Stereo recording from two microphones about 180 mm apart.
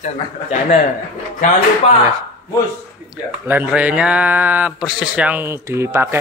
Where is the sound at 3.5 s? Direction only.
10° right (ahead or behind).